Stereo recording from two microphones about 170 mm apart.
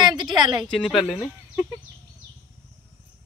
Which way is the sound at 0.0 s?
25° right (ahead or behind).